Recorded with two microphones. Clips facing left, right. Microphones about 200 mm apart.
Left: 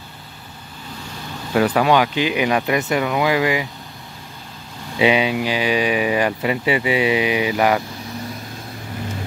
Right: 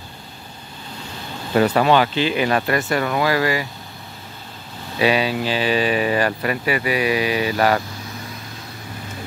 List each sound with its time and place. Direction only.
1.8 s speech: 10° left (ahead or behind)
4.9 s speech: 20° left (ahead or behind)